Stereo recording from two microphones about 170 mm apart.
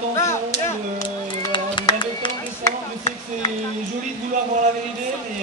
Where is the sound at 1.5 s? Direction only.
30° left (ahead or behind).